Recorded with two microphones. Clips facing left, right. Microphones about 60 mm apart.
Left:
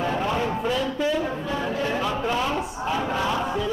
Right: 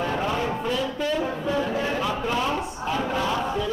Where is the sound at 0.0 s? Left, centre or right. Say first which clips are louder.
Left 1 dB; centre.